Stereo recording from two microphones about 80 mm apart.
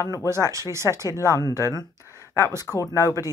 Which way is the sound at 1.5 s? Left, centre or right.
Left.